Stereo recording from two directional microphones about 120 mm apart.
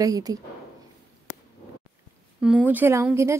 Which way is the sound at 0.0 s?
30° right (ahead or behind).